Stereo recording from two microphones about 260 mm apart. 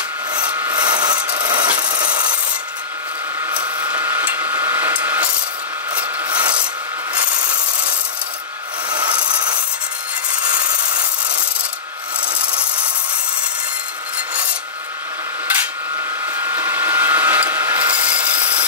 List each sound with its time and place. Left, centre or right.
0.3 s wood: centre
3.4 s a sound: centre
6.2 s rub: centre
8.9 s wood: centre
16.3 s tools: centre